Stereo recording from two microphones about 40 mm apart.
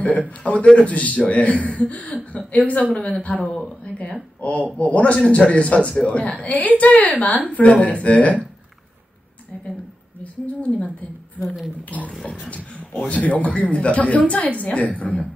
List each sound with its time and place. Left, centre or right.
0.4 s a man's voice: left
10.4 s a man's voice: left
11.9 s a man's voice: left
13.1 s a man's voice: left